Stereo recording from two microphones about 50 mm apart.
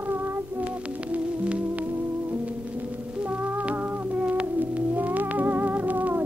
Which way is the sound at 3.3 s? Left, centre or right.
Right.